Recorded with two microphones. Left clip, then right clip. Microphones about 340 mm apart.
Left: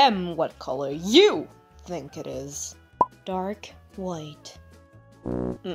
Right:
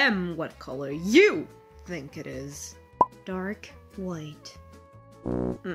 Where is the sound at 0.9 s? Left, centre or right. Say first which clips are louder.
Left 1 dB; centre.